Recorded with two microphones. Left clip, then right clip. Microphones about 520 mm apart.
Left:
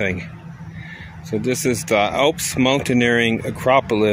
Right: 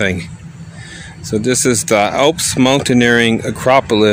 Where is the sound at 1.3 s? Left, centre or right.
Left.